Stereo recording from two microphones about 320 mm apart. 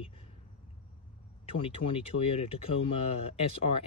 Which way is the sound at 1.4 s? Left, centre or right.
Centre.